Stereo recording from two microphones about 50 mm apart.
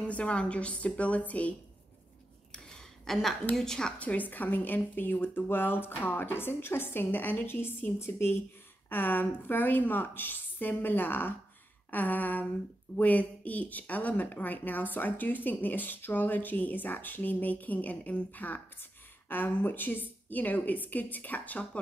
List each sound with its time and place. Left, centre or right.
0.0 s a woman's voice: left
3.1 s a woman's voice: centre
4.0 s speech: left